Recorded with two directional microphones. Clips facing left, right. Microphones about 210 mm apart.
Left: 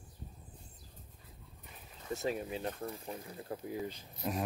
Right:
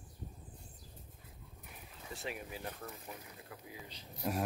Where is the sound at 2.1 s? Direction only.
40° left (ahead or behind).